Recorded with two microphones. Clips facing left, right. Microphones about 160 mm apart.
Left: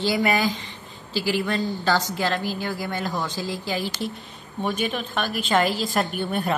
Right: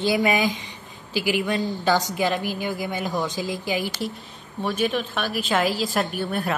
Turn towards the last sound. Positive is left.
turn(degrees=0)  # may be behind; listen again after turning